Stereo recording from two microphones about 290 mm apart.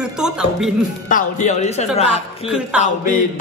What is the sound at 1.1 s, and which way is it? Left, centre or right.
A man's voice, left.